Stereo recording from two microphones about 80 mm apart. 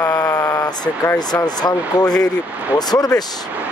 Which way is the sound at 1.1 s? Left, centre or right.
Left.